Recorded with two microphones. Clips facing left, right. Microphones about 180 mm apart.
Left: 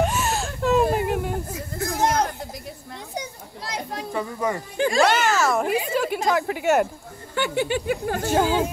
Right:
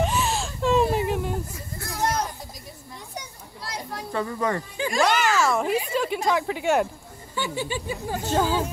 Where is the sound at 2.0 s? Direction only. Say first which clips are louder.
Left 4 dB; 80° left.